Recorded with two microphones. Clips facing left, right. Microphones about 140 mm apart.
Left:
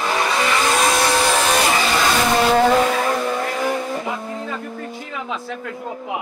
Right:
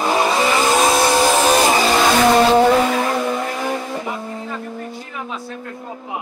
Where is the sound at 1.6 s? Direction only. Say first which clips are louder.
Right 4 dB; 35° right (ahead or behind).